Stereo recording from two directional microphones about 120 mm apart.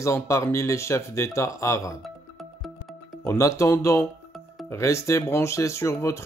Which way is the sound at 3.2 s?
25° left (ahead or behind).